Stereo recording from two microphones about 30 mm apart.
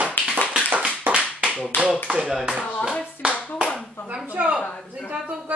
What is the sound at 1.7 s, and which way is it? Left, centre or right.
Clapping, left.